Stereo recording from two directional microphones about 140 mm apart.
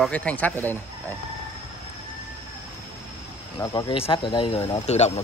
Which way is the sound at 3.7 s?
35° left (ahead or behind).